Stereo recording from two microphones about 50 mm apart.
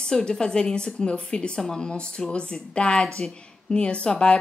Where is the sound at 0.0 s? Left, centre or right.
Centre.